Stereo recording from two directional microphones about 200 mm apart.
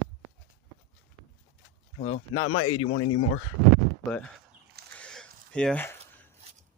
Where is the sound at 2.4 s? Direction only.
85° left.